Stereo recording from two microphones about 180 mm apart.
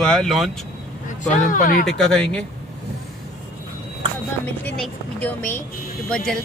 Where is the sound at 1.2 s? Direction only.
45° left (ahead or behind).